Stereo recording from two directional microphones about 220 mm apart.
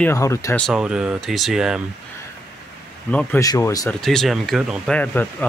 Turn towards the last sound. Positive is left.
turn(degrees=5)  # may be behind; listen again after turning